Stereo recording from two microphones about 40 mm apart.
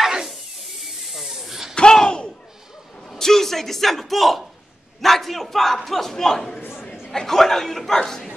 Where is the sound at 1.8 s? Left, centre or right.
Left.